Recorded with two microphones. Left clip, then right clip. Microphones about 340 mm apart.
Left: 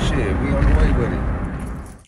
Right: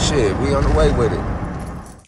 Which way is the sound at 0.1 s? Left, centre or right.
Centre.